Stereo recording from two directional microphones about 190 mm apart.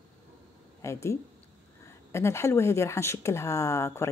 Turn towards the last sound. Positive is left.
turn(degrees=15)  # may be behind; listen again after turning